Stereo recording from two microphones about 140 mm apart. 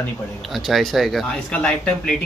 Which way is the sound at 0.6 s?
Centre (ahead or behind).